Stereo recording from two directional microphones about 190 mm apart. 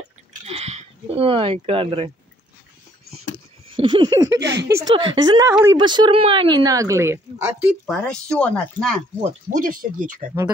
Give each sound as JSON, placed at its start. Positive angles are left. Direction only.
{"t": 0.5, "sound": "speech", "side_deg": -35}
{"t": 3.7, "sound": "speech", "side_deg": -25}
{"t": 4.4, "sound": "speech", "side_deg": -65}
{"t": 4.7, "sound": "speech", "side_deg": -25}
{"t": 7.8, "sound": "speech", "side_deg": 5}
{"t": 9.5, "sound": "speech", "side_deg": -45}